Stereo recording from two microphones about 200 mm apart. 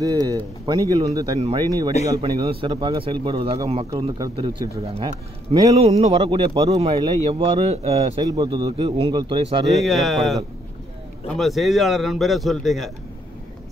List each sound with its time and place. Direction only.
0.0 s a man's voice: 15° right (ahead or behind)
9.7 s a man's voice: centre (ahead or behind)